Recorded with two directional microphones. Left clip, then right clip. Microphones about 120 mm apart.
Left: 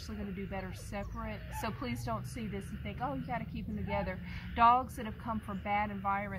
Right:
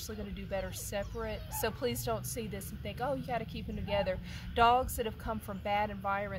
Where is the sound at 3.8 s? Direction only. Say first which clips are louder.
Right 5 dB; 50° right (ahead or behind).